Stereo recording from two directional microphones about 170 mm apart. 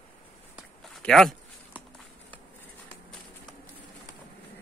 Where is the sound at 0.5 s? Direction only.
Centre (ahead or behind).